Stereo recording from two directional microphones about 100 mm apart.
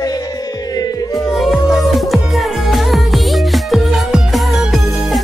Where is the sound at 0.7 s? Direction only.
40° left (ahead or behind).